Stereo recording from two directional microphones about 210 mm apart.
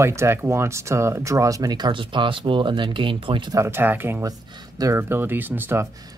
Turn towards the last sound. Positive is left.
turn(degrees=-10)  # may be behind; listen again after turning